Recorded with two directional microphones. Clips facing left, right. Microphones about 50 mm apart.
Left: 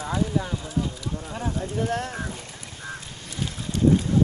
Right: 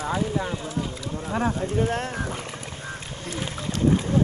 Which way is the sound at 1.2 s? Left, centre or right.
Right.